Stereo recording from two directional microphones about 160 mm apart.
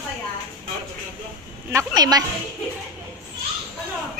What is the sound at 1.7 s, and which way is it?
Speech, 25° right (ahead or behind).